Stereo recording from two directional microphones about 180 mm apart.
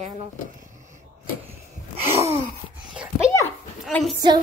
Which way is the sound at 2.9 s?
5° right (ahead or behind).